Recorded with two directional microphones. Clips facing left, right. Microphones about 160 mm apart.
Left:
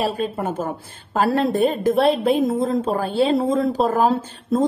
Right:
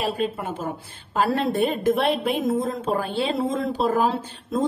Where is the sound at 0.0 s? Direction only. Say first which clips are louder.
Left 3 dB; 45° left (ahead or behind).